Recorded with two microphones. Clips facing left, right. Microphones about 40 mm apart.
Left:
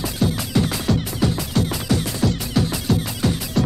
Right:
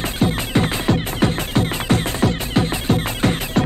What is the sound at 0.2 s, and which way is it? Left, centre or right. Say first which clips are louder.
Music: right 2 dB; right.